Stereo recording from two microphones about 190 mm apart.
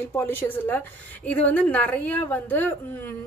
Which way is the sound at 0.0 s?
10° left (ahead or behind).